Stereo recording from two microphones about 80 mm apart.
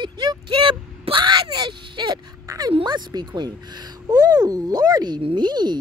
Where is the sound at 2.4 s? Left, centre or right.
Right.